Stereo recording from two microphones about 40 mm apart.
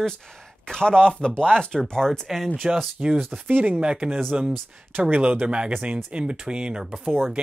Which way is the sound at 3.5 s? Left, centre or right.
Right.